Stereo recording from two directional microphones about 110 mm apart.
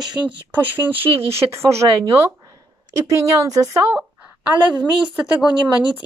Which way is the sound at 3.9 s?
10° right (ahead or behind).